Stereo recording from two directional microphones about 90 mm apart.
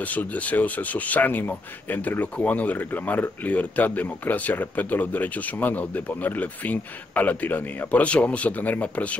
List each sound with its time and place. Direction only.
0.0 s speech: 15° left (ahead or behind)